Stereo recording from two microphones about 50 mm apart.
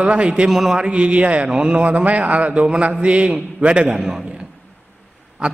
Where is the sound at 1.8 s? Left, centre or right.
Right.